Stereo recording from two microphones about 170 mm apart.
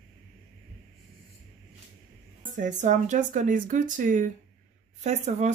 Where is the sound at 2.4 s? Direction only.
50° right (ahead or behind).